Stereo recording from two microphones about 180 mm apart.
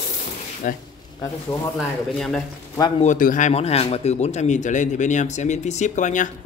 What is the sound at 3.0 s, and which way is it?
Speech, 45° left (ahead or behind).